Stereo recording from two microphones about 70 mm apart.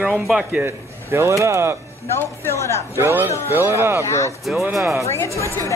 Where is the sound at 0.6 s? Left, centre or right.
Right.